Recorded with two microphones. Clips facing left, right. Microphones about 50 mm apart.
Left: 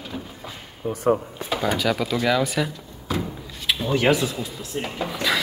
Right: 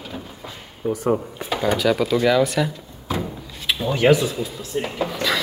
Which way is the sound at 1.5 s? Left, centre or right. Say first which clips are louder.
Right 3 dB; centre.